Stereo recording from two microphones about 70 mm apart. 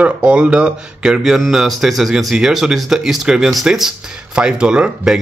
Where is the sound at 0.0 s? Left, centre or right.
Centre.